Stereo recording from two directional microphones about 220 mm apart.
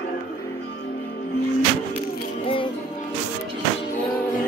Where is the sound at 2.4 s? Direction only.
25° left (ahead or behind).